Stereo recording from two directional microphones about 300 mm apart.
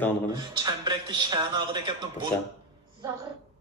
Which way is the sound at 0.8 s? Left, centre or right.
Centre.